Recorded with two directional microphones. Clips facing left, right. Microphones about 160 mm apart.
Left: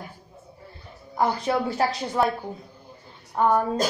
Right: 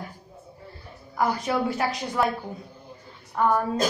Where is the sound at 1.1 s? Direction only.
25° left (ahead or behind).